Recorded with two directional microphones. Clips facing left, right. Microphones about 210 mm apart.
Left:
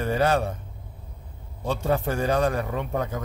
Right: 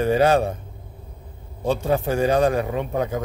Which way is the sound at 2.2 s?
15° right (ahead or behind).